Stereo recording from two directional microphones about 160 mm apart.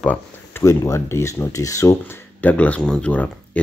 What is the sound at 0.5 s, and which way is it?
Speech, 20° left (ahead or behind).